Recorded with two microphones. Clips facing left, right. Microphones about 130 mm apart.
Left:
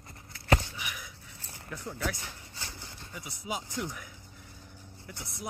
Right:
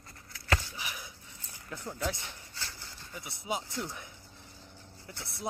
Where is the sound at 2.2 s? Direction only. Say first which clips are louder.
Left 1 dB; 20° left (ahead or behind).